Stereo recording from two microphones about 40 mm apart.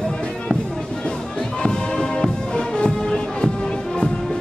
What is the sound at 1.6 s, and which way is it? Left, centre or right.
Music, centre.